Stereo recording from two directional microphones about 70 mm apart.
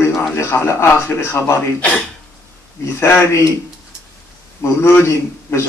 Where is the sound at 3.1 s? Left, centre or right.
Left.